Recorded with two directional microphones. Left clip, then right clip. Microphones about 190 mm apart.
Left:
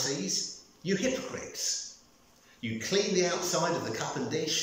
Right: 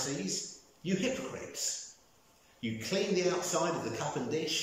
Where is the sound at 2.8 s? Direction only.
10° right (ahead or behind).